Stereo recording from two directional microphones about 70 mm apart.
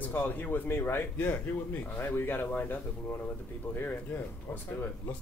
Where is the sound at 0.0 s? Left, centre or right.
Left.